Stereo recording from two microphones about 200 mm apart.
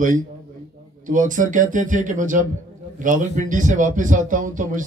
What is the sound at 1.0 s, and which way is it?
Speech, 40° right (ahead or behind).